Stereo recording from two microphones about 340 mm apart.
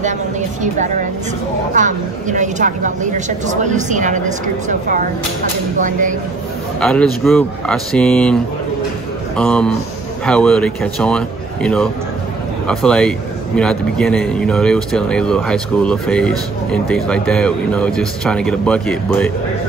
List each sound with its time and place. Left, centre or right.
0.6 s a woman's voice: right
6.8 s a man's voice: centre
9.4 s a man's voice: centre